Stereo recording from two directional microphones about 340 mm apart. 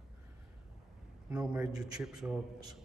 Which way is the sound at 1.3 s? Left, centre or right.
Centre.